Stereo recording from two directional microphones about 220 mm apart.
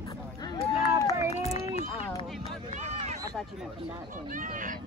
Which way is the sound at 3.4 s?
5° left (ahead or behind).